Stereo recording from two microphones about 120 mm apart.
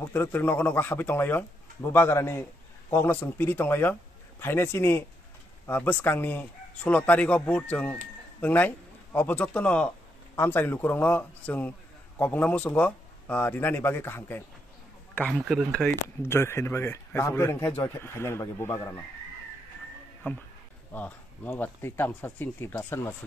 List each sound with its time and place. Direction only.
0.1 s a man's voice: 20° left (ahead or behind)
15.3 s speech: 5° right (ahead or behind)
16.2 s a man's voice: 20° left (ahead or behind)
20.9 s speech: 15° left (ahead or behind)